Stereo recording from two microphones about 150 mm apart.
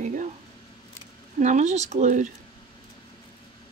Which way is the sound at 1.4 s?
50° right (ahead or behind).